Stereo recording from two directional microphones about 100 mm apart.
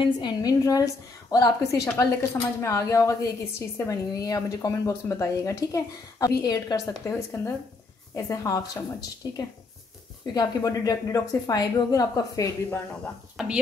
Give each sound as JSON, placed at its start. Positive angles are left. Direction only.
{"t": 0.0, "sound": "a woman's voice", "side_deg": 45}
{"t": 7.4, "sound": "a woman's voice", "side_deg": 25}
{"t": 12.6, "sound": "speech", "side_deg": 15}
{"t": 13.4, "sound": "speech", "side_deg": -5}